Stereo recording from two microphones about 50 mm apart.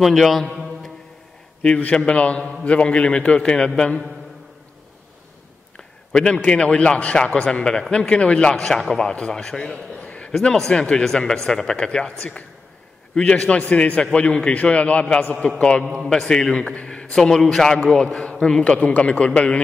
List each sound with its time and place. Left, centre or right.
0.0 s a man's voice: centre
1.8 s a man's voice: left
5.8 s a man's voice: centre
9.9 s a sound: left
10.4 s a man's voice: centre
18.6 s a man's voice: left